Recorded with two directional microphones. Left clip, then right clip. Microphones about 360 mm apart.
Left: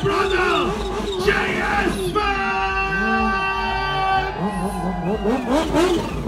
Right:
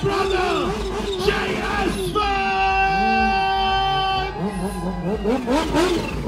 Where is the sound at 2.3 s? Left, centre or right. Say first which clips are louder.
Right 2 dB; centre.